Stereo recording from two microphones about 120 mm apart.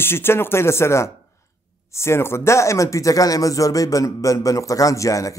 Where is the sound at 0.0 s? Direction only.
20° left (ahead or behind).